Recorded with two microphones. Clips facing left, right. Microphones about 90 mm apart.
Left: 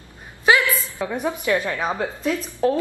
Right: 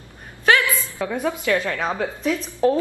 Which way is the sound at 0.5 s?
15° left (ahead or behind).